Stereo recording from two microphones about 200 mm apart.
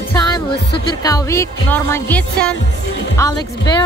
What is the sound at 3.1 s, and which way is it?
Speech, 15° left (ahead or behind).